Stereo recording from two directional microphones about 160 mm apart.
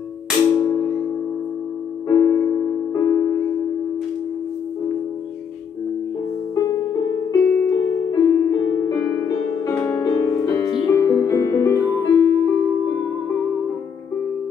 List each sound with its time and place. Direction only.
0.6 s music: 20° left (ahead or behind)
2.0 s music: 15° left (ahead or behind)
7.4 s music: 15° left (ahead or behind)